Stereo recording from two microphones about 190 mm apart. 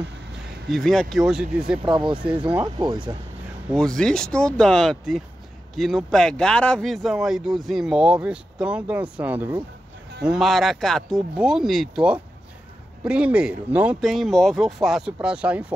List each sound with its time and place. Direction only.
0.7 s speech: centre (ahead or behind)
2.6 s speech: 25° right (ahead or behind)
3.7 s speech: 5° left (ahead or behind)